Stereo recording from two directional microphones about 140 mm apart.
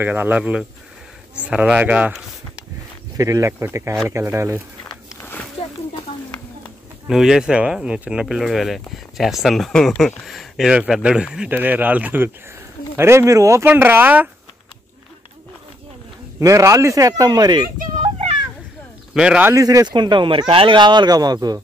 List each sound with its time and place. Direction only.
0.0 s speech: 15° right (ahead or behind)
3.2 s speech: 25° right (ahead or behind)
5.1 s a sound: 15° left (ahead or behind)
7.1 s speech: 5° right (ahead or behind)
16.3 s speech: 20° right (ahead or behind)
19.1 s speech: 10° right (ahead or behind)
19.5 s speech: 25° right (ahead or behind)